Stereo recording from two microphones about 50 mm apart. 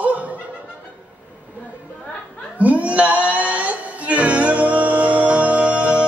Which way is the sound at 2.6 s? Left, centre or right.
Right.